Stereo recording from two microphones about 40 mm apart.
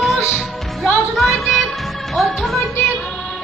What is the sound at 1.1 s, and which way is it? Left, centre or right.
Speech, centre.